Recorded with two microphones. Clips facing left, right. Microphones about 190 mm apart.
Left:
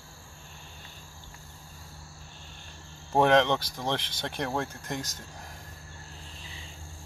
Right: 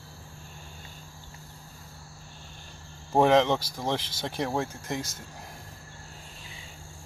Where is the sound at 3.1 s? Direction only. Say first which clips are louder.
Right 1 dB; 5° right (ahead or behind).